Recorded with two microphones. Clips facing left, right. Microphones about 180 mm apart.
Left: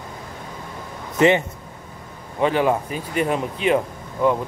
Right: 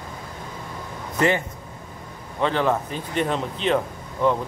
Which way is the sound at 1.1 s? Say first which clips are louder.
Left 5 dB; 20° left (ahead or behind).